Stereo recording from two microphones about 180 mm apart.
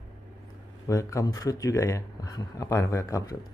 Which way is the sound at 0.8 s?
15° left (ahead or behind).